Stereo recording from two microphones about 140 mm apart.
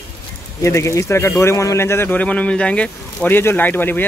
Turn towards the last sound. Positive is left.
turn(degrees=15)  # may be behind; listen again after turning